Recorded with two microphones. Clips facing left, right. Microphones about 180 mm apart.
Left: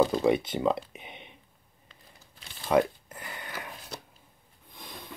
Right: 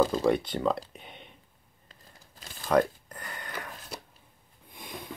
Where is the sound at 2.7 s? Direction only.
5° left (ahead or behind).